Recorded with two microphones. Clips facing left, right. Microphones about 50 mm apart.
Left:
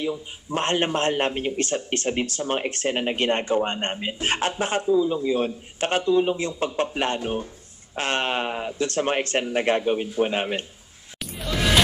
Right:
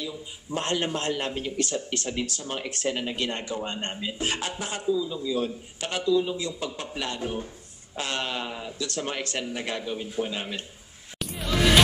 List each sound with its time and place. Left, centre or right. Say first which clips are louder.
0.0 s a man's voice: left 7 dB; left
11.1 s music: right 1 dB; centre